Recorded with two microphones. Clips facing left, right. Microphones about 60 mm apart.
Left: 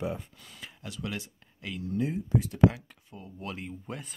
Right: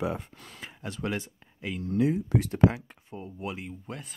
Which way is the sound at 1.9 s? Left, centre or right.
Right.